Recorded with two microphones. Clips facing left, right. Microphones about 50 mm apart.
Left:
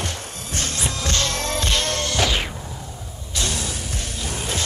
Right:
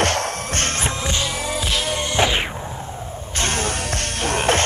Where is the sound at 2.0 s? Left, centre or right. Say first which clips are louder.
Right 3 dB; right.